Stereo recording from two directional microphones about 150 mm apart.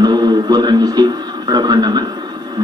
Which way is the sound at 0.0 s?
25° right (ahead or behind).